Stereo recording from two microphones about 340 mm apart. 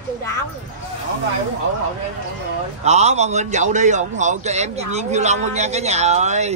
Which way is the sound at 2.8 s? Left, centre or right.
Centre.